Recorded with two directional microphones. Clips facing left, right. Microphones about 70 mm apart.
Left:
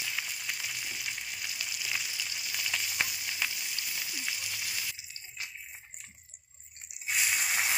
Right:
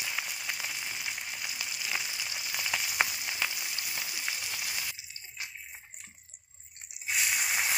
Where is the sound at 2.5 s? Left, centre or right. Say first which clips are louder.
Right 3 dB; right.